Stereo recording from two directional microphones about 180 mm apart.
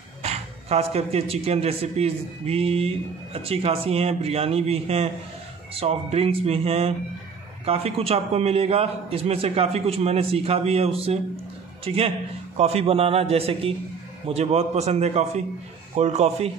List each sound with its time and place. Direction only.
0.2 s a man's voice: 35° right (ahead or behind)